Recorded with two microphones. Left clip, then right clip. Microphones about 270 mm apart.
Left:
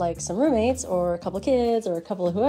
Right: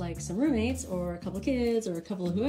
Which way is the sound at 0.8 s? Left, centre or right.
Left.